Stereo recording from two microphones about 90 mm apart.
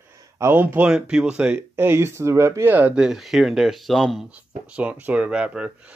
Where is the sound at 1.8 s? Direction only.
25° right (ahead or behind).